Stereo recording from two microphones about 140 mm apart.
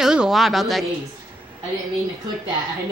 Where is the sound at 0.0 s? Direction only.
5° right (ahead or behind).